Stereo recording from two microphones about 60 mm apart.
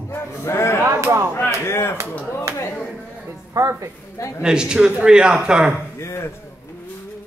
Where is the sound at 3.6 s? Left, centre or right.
Right.